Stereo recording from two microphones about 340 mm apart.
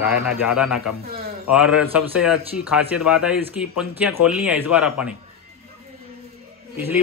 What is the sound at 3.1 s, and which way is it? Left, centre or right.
Speech, centre.